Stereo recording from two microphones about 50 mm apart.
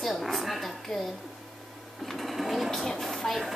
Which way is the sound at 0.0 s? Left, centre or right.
Centre.